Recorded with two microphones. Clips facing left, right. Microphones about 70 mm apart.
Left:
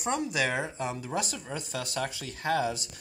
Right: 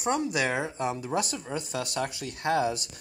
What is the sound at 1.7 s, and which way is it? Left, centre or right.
Speech, right.